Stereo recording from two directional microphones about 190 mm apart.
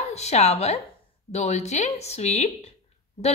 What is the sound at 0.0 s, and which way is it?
Speech, 35° left (ahead or behind).